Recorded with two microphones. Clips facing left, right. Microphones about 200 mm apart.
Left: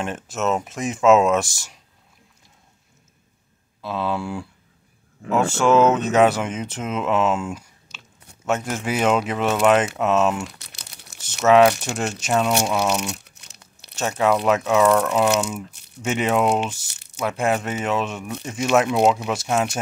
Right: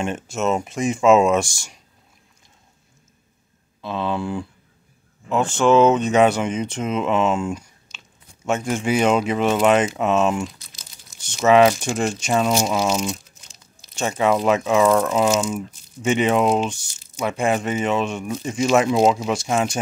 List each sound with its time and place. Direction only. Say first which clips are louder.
0.0 s speech: right 2 dB; centre (ahead or behind)
3.8 s speech: right 1 dB; 5° left (ahead or behind)
10.4 s crumpling: right 4 dB; 70° left (ahead or behind)
11.2 s speech: even; 5° left (ahead or behind)
13.2 s crumpling: left 1 dB; 70° left (ahead or behind)
13.9 s speech: right 1 dB; centre (ahead or behind)
15.3 s speech: right 1 dB; 65° left (ahead or behind)
16.0 s speech: right 2 dB; centre (ahead or behind)
16.8 s a sound: even; 70° left (ahead or behind)
17.2 s speech: right 1 dB; 5° left (ahead or behind)